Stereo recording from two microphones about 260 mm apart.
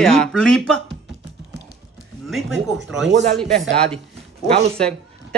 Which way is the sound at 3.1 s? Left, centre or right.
Right.